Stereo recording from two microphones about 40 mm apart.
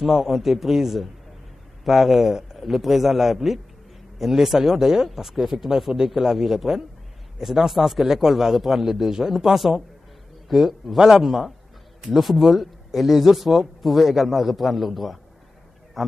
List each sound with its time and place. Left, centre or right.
0.0 s speech: centre
11.2 s speech: centre